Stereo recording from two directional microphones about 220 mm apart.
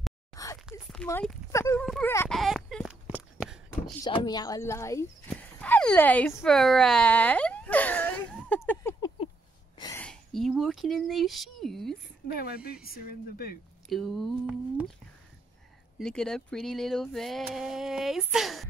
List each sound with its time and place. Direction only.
0.3 s whispering: 15° left (ahead or behind)
1.0 s speech: 10° left (ahead or behind)
1.9 s a sound: 5° left (ahead or behind)
4.0 s speech: 20° left (ahead or behind)
5.3 s a sound: 5° left (ahead or behind)
10.0 s a sound: centre (ahead or behind)
12.4 s speech: 45° left (ahead or behind)
13.8 s speech: centre (ahead or behind)
16.0 s speech: 5° left (ahead or behind)